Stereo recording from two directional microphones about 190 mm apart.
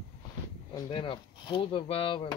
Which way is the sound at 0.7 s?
25° left (ahead or behind).